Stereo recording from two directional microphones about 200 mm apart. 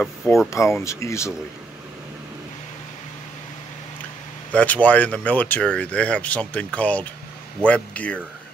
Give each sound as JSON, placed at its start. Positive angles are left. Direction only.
{"t": 0.0, "sound": "speech", "side_deg": 0}
{"t": 0.5, "sound": "speech", "side_deg": 15}
{"t": 4.5, "sound": "speech", "side_deg": 5}